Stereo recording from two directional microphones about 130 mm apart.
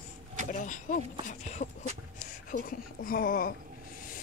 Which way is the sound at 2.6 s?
90° left.